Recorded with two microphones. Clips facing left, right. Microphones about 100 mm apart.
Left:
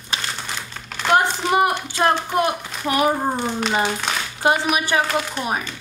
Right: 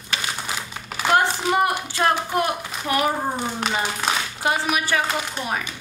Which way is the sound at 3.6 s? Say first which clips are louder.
Left 3 dB; 5° right (ahead or behind).